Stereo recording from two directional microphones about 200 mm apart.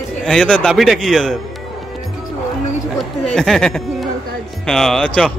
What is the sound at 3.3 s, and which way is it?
A man's voice, 5° left (ahead or behind).